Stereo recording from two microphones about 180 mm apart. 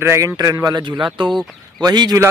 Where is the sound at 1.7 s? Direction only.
20° right (ahead or behind).